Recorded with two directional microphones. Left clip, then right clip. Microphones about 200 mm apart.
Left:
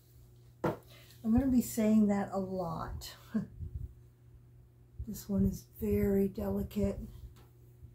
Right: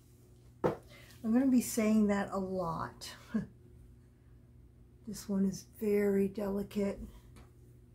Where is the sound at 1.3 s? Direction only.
25° right (ahead or behind).